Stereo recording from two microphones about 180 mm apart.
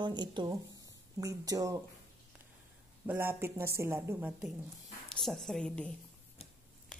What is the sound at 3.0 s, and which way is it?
Speech, 10° right (ahead or behind).